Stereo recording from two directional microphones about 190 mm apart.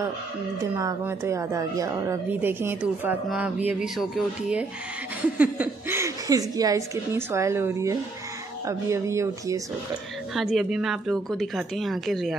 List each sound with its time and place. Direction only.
0.7 s a woman's voice: 15° right (ahead or behind)
10.3 s speech: centre (ahead or behind)